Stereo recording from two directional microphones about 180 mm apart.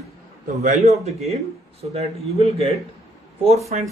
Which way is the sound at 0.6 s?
40° right (ahead or behind).